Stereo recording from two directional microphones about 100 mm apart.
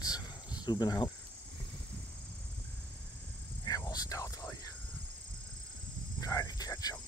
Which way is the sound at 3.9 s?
40° left (ahead or behind).